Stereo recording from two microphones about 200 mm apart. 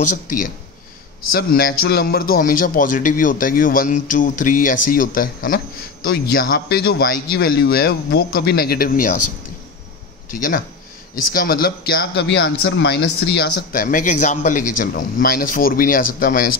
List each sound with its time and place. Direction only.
1.3 s speech: 50° left (ahead or behind)
10.3 s speech: 45° left (ahead or behind)